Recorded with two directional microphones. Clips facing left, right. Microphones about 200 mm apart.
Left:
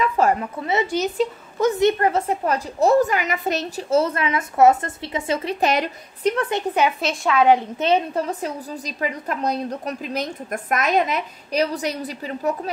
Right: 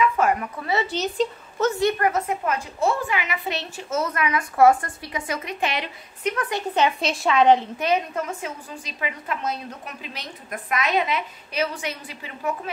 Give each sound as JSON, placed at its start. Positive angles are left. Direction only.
{"t": 0.0, "sound": "a woman's voice", "side_deg": 30}
{"t": 6.7, "sound": "a woman's voice", "side_deg": 5}
{"t": 7.8, "sound": "a woman's voice", "side_deg": 30}